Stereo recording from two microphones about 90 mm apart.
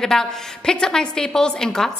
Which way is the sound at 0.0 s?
5° left (ahead or behind).